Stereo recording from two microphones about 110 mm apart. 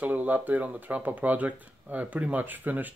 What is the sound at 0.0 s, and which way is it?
Speech, 15° right (ahead or behind).